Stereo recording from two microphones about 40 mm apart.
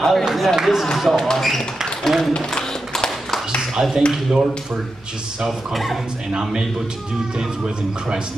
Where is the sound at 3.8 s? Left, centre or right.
Right.